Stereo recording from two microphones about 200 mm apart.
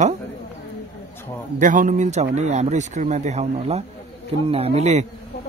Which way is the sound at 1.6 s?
40° right (ahead or behind).